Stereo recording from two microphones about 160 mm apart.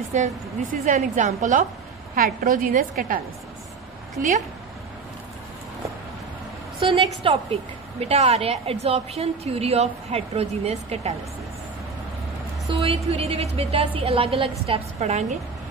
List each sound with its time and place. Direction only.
0.1 s a woman's voice: 50° right (ahead or behind)
6.8 s a woman's voice: 35° right (ahead or behind)
12.8 s a woman's voice: 40° right (ahead or behind)